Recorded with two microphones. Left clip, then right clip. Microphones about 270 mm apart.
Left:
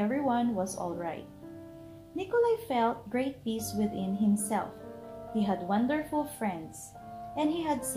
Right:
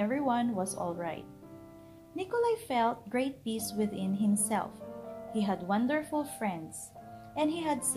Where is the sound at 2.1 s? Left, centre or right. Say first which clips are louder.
Left 3 dB; right.